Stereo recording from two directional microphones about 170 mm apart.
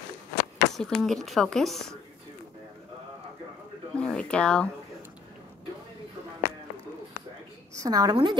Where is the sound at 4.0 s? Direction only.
5° left (ahead or behind).